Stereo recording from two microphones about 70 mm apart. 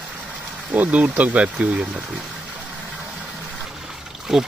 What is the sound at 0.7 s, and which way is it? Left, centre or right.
Speech, right.